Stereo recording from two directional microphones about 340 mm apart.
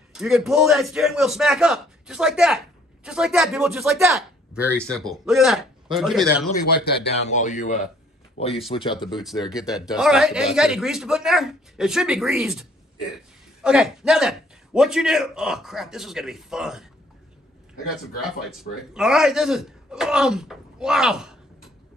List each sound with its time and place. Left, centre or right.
0.1 s a man's voice: centre
7.1 s speech: left
9.4 s a man's voice: centre
18.2 s a man's voice: centre